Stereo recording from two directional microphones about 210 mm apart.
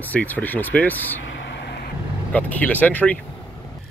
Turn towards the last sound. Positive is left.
turn(degrees=5)  # may be behind; listen again after turning